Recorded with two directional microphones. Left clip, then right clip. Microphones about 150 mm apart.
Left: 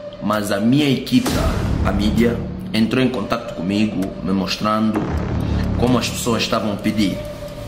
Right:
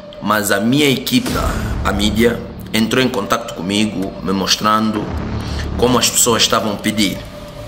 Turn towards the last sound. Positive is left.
turn(degrees=15)  # may be behind; listen again after turning